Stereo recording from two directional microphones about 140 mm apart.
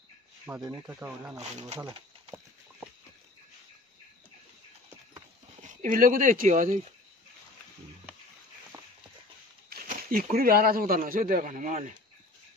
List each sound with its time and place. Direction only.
0.5 s speech: 15° right (ahead or behind)
5.6 s speech: 75° right (ahead or behind)
9.7 s speech: 90° right; by 12.0 s 65° right (ahead or behind)